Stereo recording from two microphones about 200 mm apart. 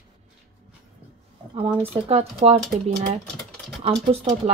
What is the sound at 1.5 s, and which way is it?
Speech, 30° right (ahead or behind).